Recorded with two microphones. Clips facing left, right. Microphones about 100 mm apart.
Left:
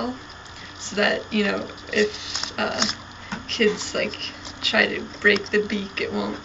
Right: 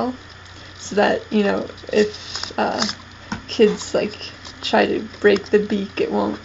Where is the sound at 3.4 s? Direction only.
35° right (ahead or behind).